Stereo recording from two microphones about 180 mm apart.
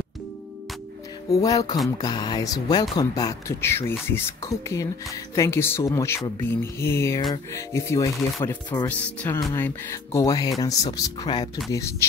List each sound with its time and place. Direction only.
1.4 s speech: 20° left (ahead or behind)